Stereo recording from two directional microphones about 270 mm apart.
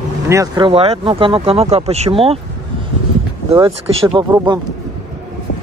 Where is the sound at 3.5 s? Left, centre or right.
Centre.